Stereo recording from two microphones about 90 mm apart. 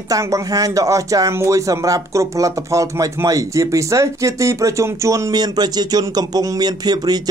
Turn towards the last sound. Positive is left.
turn(degrees=-50)  # may be behind; listen again after turning